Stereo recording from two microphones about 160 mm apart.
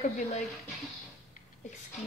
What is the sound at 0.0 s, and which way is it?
Speech, 50° left (ahead or behind).